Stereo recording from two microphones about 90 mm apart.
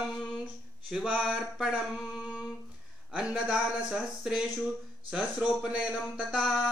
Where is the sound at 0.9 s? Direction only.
5° right (ahead or behind).